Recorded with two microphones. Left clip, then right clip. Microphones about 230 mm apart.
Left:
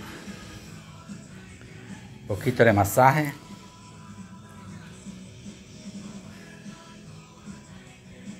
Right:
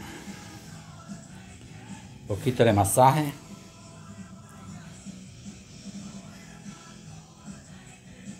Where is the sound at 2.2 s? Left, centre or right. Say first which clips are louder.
Left 3 dB; centre.